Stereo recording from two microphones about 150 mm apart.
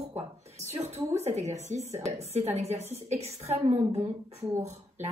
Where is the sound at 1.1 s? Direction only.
45° right (ahead or behind).